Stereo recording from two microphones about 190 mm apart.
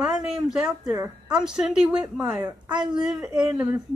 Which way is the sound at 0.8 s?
20° right (ahead or behind).